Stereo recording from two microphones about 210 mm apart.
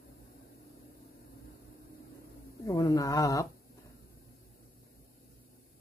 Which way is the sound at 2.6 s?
15° left (ahead or behind).